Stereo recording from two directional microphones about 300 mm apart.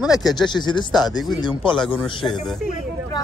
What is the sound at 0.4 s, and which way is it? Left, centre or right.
Speech, centre.